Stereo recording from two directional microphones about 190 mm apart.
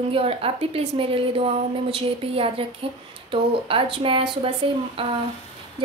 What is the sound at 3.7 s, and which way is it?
Speech, 30° right (ahead or behind).